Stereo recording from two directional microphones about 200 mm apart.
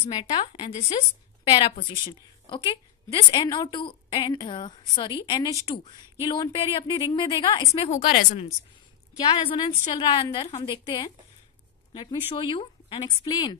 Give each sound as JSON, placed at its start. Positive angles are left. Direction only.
{"t": 0.0, "sound": "a woman's voice", "side_deg": 25}
{"t": 5.6, "sound": "speech", "side_deg": -15}
{"t": 6.2, "sound": "a woman's voice", "side_deg": 20}
{"t": 9.2, "sound": "a woman's voice", "side_deg": 25}